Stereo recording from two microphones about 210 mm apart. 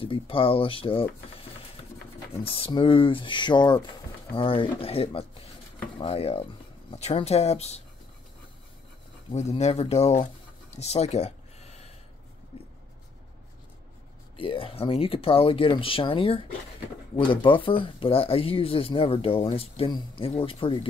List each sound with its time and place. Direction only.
0.0 s speech: 25° left (ahead or behind)
2.4 s speech: 25° left (ahead or behind)
9.3 s speech: 30° left (ahead or behind)
10.8 s a sound: 30° left (ahead or behind)
12.5 s writing: 25° left (ahead or behind)
14.3 s speech: 25° left (ahead or behind)